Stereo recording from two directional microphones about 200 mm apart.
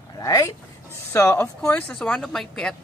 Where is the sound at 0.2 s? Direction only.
15° left (ahead or behind).